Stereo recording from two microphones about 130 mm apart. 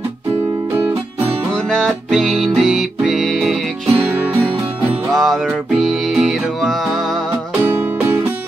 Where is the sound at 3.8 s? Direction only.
15° right (ahead or behind).